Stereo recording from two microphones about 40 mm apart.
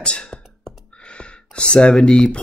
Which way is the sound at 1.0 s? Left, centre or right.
Left.